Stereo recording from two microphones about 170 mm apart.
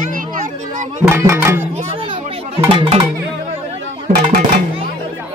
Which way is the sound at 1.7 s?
30° right (ahead or behind).